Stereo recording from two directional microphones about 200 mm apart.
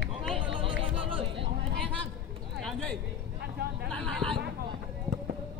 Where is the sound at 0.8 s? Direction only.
25° right (ahead or behind).